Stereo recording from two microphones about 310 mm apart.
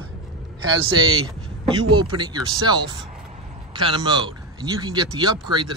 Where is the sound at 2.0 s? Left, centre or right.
Centre.